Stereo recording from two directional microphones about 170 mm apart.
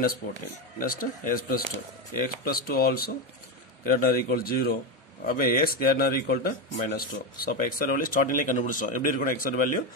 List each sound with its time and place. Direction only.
0.7 s speech: 55° left (ahead or behind)